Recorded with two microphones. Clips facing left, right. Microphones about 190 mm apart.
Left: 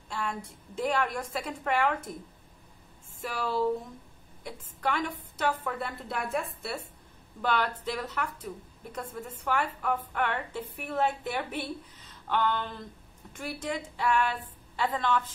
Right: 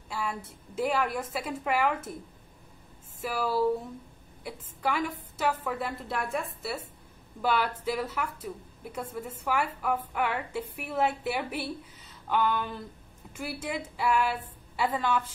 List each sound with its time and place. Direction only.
0.1 s a woman's voice: 5° right (ahead or behind)
3.2 s a woman's voice: 5° right (ahead or behind)